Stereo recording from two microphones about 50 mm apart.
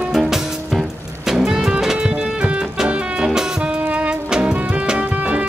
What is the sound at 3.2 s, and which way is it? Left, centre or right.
Music, centre.